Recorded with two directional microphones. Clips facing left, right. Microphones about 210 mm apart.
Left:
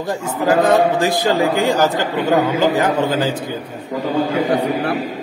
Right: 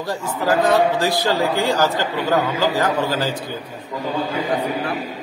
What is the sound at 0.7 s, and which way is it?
Speech, 50° left (ahead or behind).